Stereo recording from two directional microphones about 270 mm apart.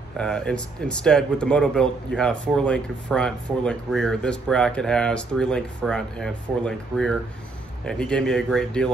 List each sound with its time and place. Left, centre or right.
0.2 s speech: centre